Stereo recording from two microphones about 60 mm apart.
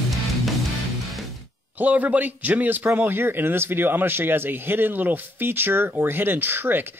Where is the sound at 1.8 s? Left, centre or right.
Right.